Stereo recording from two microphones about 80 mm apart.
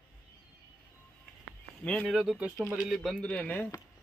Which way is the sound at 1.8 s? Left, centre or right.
Centre.